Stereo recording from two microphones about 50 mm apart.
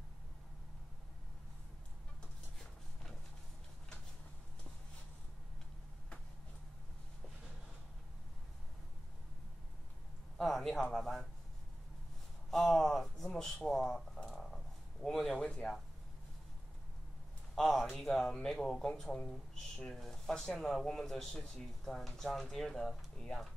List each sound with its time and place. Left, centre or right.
2.6 s a sound: centre
10.3 s speech: centre
12.4 s a sound: centre
15.0 s speech: centre
15.3 s speech: centre
17.6 s speech: centre